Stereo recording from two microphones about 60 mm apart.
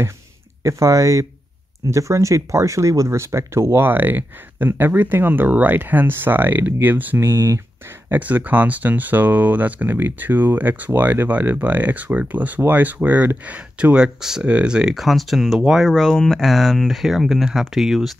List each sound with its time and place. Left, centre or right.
0.7 s speech: right
3.2 s speech: right
7.2 s speech: right
8.1 s speech: right
13.9 s speech: centre
15.0 s speech: centre
15.9 s speech: centre